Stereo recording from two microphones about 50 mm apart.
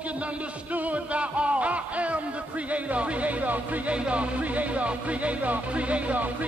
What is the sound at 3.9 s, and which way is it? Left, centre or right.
Music, right.